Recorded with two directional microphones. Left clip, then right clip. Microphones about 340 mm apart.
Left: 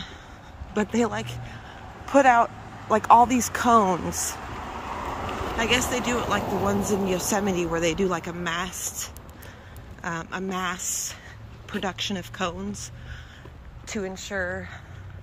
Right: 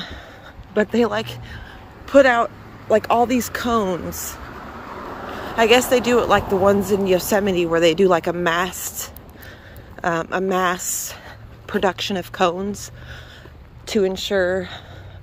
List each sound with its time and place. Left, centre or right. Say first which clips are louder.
0.7 s speech: right 7 dB; centre
4.7 s vehicle: left 1 dB; left
5.6 s speech: right 10 dB; centre
10.0 s speech: right 10 dB; centre
13.8 s speech: right 12 dB; right